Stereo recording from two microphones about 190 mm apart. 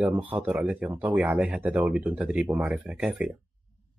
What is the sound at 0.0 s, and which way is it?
Speech, 10° right (ahead or behind).